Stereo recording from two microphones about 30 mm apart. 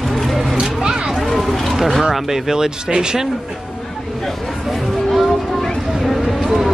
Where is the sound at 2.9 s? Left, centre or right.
Right.